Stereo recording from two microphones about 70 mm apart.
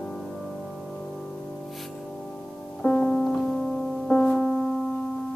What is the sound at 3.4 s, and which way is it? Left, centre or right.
Music, centre.